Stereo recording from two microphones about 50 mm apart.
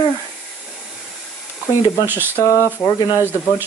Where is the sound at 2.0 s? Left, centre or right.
Right.